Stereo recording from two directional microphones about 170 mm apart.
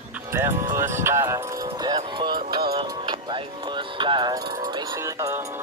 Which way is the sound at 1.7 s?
25° right (ahead or behind).